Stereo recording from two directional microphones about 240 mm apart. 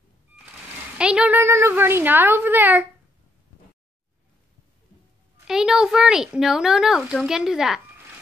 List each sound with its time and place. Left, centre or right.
0.9 s a woman's voice: centre
5.5 s speech: centre